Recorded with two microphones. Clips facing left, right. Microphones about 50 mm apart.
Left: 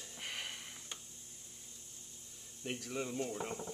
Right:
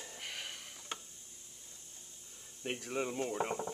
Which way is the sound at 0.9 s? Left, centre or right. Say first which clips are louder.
Right 8 dB; right.